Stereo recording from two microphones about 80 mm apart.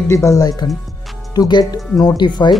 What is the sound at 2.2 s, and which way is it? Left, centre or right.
Speech, left.